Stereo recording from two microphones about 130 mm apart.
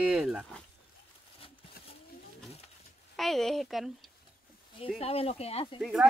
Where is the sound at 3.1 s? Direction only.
Centre (ahead or behind).